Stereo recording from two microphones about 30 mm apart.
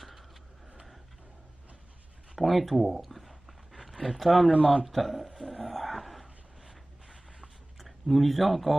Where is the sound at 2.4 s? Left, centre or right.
Centre.